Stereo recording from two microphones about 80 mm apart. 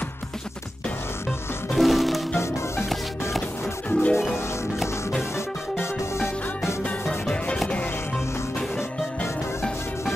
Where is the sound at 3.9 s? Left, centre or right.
Centre.